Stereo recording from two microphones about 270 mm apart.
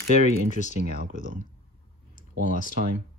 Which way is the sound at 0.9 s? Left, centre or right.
Right.